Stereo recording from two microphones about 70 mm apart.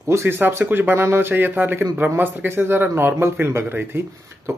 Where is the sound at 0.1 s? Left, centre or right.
Right.